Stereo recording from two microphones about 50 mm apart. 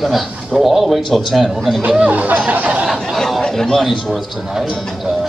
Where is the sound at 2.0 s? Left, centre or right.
Right.